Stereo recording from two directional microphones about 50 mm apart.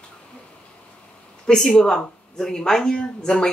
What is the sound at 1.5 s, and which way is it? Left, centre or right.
Speech, centre.